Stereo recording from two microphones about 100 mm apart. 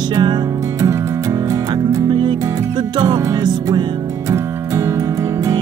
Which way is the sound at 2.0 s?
50° right (ahead or behind).